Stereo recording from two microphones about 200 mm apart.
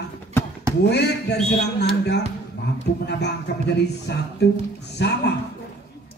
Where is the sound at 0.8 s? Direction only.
55° left (ahead or behind).